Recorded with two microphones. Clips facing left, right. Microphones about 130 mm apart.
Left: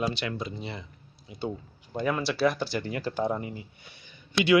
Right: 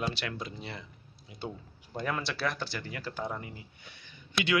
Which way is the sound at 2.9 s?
25° left (ahead or behind).